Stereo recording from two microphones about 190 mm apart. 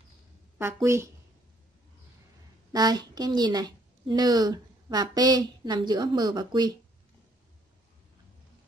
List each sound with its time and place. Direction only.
0.8 s speech: 15° right (ahead or behind)
2.7 s a woman's voice: 20° right (ahead or behind)